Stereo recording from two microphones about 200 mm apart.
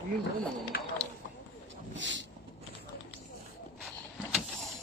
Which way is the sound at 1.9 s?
65° right (ahead or behind).